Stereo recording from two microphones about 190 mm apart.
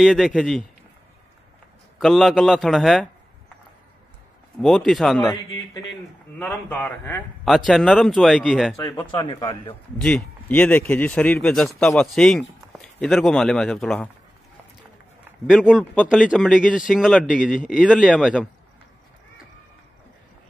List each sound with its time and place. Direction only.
0.0 s speech: 5° right (ahead or behind)
2.0 s speech: centre (ahead or behind)
4.6 s speech: centre (ahead or behind)
6.4 s a man's voice: 10° left (ahead or behind)
8.7 s a man's voice: 15° left (ahead or behind)
10.0 s speech: 5° left (ahead or behind)
15.4 s speech: 5° right (ahead or behind)